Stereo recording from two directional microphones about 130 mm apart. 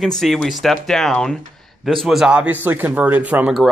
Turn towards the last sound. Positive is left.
turn(degrees=-5)  # may be behind; listen again after turning